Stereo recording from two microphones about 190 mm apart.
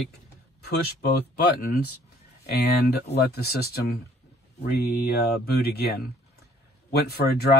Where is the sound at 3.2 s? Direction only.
55° left (ahead or behind).